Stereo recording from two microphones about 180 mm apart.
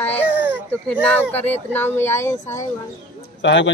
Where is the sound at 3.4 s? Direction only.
90° left.